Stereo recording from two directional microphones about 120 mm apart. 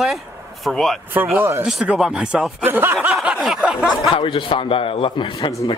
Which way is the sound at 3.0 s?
5° right (ahead or behind).